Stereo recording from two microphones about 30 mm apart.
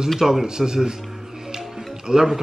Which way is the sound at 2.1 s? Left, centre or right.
Right.